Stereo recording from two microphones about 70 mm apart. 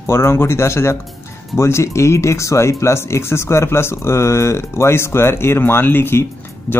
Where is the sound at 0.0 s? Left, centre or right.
Left.